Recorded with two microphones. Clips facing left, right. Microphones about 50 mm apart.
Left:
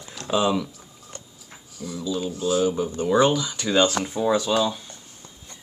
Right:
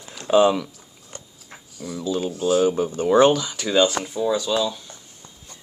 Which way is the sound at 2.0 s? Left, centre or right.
Right.